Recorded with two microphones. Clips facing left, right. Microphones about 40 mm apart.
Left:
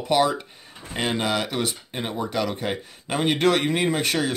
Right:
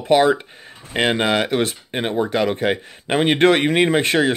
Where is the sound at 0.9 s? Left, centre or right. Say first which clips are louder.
Right 6 dB; right.